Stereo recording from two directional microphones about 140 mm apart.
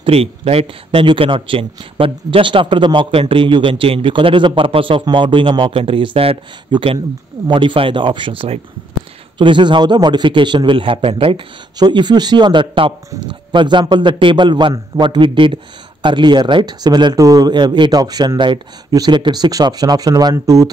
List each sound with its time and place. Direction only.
0.0 s a man's voice: 45° right (ahead or behind); by 20.7 s 25° right (ahead or behind)